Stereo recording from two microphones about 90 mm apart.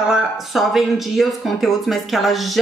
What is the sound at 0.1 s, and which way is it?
Speech, centre (ahead or behind).